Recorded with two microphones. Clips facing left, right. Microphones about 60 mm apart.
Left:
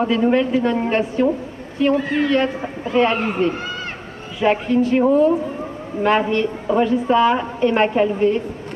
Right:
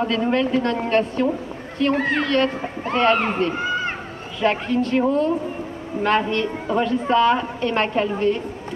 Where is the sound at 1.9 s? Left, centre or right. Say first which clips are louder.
Even; right.